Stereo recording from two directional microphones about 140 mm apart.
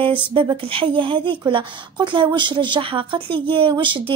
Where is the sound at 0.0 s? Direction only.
35° right (ahead or behind).